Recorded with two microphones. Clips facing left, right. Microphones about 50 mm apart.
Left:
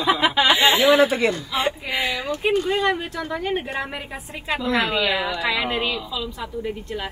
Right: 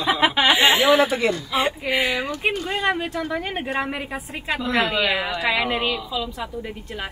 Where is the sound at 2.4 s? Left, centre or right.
Right.